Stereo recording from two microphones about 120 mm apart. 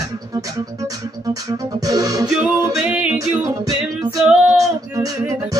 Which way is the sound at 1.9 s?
30° right (ahead or behind).